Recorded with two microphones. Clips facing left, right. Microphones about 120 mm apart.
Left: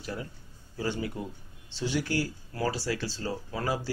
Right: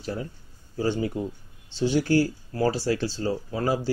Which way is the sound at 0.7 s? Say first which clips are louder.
Right 6 dB; 30° right (ahead or behind).